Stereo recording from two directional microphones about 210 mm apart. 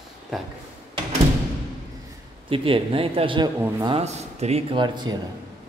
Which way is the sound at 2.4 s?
25° right (ahead or behind).